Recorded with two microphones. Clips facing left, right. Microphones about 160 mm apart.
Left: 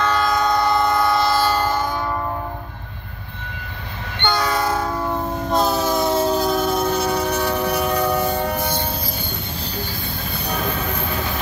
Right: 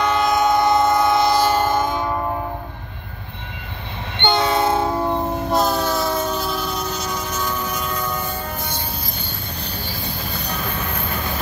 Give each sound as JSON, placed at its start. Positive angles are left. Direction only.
{"t": 0.0, "sound": "train", "side_deg": -20}
{"t": 4.2, "sound": "train", "side_deg": -25}
{"t": 5.5, "sound": "train", "side_deg": 0}
{"t": 5.9, "sound": "train", "side_deg": 25}